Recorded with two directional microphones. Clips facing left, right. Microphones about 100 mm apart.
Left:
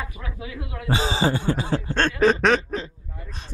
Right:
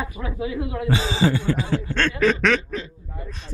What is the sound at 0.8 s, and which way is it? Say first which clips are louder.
Snicker: even; 35° left (ahead or behind).